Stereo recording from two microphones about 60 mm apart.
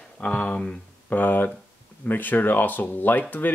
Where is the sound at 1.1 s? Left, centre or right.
Left.